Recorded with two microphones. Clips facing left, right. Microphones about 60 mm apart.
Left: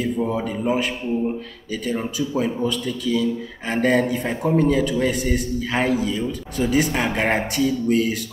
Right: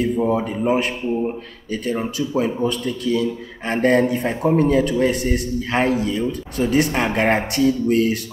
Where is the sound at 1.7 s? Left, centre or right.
Right.